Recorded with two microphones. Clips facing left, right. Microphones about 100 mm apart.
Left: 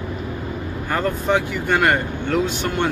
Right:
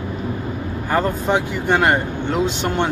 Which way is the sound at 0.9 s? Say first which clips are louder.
Right 1 dB; 30° right (ahead or behind).